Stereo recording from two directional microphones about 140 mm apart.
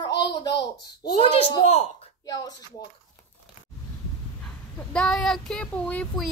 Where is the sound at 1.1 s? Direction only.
45° left (ahead or behind).